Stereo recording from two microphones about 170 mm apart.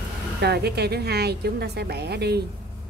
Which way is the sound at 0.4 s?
70° right (ahead or behind).